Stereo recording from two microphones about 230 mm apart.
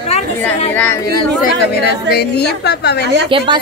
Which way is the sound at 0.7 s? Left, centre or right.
Centre.